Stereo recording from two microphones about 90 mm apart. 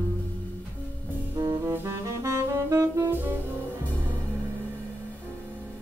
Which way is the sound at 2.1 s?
35° right (ahead or behind).